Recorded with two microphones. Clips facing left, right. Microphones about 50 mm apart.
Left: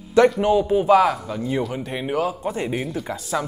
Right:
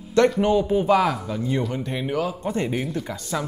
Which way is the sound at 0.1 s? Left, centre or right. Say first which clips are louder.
Left 2 dB; centre.